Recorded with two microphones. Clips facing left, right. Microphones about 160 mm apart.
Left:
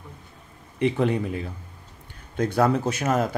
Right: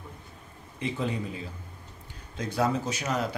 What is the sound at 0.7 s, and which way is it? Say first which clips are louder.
Speech: left 8 dB; 65° left (ahead or behind).